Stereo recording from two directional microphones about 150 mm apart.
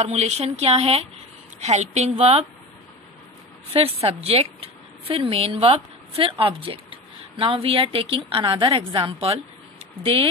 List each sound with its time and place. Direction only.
0.0 s speech: 45° right (ahead or behind)
3.7 s a woman's voice: 40° right (ahead or behind)